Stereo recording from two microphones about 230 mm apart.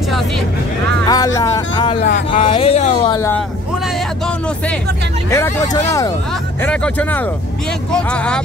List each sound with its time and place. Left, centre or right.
1.0 s speech: centre
3.2 s speech: centre
5.3 s speech: centre